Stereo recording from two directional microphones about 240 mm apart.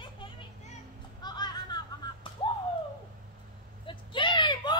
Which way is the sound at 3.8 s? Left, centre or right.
Centre.